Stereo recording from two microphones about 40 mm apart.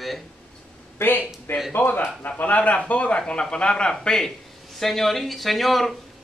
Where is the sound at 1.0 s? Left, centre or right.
Left; by 5.9 s centre.